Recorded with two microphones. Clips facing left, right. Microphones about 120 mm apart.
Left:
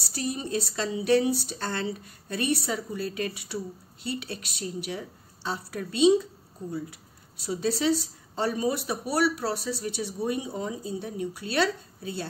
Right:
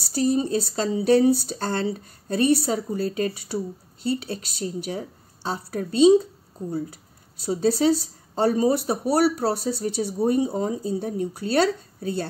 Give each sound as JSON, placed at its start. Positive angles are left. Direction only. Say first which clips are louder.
{"t": 0.1, "sound": "speech", "louder": "right 8 dB", "side_deg": -35}
{"t": 7.4, "sound": "speech", "louder": "right 6 dB", "side_deg": -35}